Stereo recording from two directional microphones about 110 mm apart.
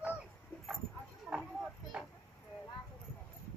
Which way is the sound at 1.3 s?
Centre (ahead or behind).